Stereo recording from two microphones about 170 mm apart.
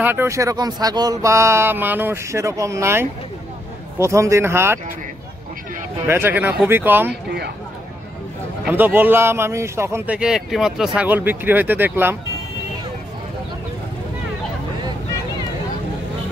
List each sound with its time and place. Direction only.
0.0 s a man's voice: 15° right (ahead or behind)
6.0 s a man's voice: 10° right (ahead or behind)
7.1 s speech: 70° right (ahead or behind)
8.6 s a man's voice: 10° right (ahead or behind)